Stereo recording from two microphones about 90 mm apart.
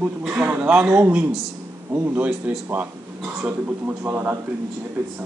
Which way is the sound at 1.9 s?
25° right (ahead or behind).